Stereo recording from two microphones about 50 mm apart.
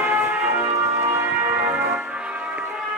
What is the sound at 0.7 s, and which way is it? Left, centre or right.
Music, right.